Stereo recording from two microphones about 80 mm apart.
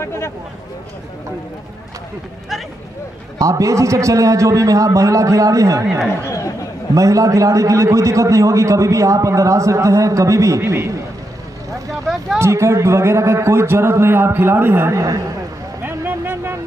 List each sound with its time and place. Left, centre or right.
0.0 s speech: left
3.3 s a man's voice: right
7.0 s a man's voice: right
12.4 s a man's voice: right
15.8 s a sound: right